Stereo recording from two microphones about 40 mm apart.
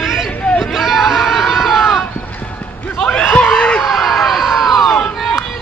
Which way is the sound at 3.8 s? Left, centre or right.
Centre.